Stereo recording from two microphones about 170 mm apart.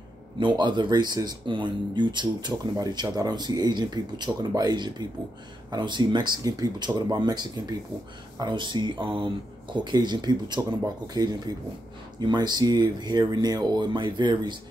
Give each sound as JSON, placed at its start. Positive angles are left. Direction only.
{"t": 0.4, "sound": "speech", "side_deg": -25}